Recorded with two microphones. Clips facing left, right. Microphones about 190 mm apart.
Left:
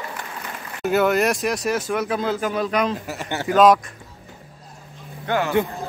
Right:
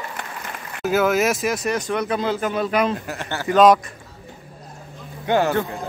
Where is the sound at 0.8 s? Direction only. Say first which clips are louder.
Even; centre (ahead or behind).